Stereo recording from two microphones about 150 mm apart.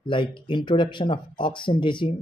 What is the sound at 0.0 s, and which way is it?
Speech, 35° left (ahead or behind).